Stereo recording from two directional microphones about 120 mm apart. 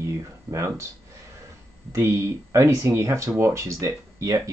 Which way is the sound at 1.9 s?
25° right (ahead or behind).